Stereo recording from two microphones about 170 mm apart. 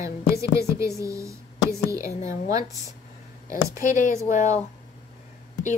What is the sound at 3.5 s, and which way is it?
Speech, 15° right (ahead or behind).